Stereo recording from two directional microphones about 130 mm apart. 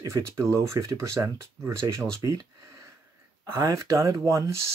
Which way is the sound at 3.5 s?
25° right (ahead or behind).